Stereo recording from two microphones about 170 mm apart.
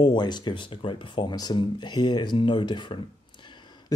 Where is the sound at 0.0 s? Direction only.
25° left (ahead or behind).